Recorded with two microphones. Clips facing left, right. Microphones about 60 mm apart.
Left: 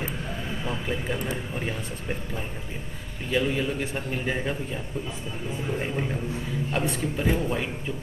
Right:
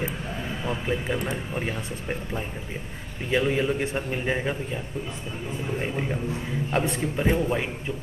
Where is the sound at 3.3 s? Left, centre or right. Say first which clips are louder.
Right 2 dB; centre.